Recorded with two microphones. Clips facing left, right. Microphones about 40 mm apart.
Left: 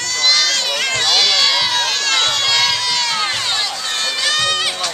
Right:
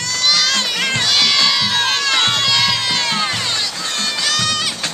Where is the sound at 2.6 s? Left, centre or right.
Centre.